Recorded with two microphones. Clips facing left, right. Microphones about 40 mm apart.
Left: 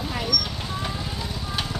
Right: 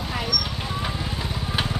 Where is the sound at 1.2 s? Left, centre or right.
Right.